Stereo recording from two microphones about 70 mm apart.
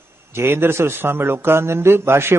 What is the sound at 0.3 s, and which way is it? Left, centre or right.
A man's voice, right.